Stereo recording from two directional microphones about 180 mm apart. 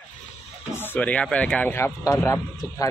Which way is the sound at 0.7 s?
10° left (ahead or behind).